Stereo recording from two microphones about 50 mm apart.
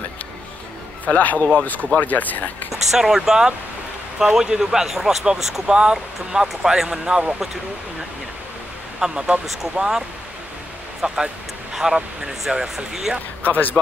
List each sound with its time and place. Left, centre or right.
1.0 s speech: left
2.7 s speech: centre
6.5 s speech: centre
9.0 s speech: centre
9.5 s speech: centre
11.0 s speech: right
11.7 s speech: centre
13.4 s speech: left